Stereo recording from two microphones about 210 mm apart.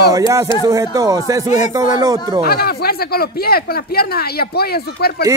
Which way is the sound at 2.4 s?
45° left (ahead or behind).